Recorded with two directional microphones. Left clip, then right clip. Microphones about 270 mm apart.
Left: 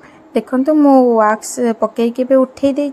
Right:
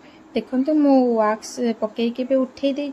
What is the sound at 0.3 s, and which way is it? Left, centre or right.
Speech, centre.